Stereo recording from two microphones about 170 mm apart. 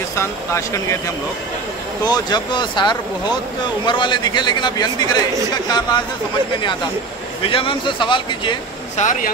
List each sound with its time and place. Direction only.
0.1 s a man's voice: 15° left (ahead or behind)
7.4 s a man's voice: 30° left (ahead or behind)
8.9 s speech: 45° left (ahead or behind)